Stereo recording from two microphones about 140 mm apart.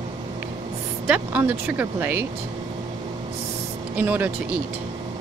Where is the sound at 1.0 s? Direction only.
10° right (ahead or behind).